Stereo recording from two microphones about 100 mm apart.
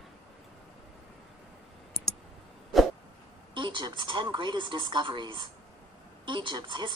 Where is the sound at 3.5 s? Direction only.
55° right (ahead or behind).